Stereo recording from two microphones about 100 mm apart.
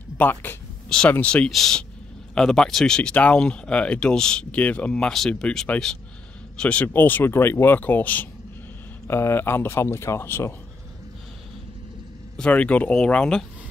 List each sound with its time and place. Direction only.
0.2 s speech: 20° left (ahead or behind)
0.8 s speech: 5° left (ahead or behind); by 10.5 s 25° left (ahead or behind)
12.4 s speech: 15° left (ahead or behind)